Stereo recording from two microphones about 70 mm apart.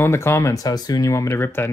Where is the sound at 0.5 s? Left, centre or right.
Left.